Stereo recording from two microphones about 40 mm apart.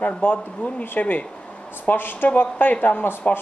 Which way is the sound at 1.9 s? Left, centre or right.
Left.